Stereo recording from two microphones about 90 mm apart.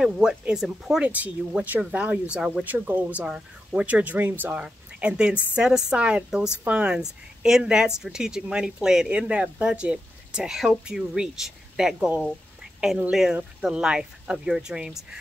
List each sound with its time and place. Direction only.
0.0 s speech: 5° right (ahead or behind)
1.0 s speech: 15° right (ahead or behind)
2.6 s speech: 20° right (ahead or behind); by 12.1 s 5° right (ahead or behind)
13.1 s speech: 5° right (ahead or behind)